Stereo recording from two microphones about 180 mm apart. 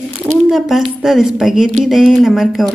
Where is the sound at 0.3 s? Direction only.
Centre (ahead or behind).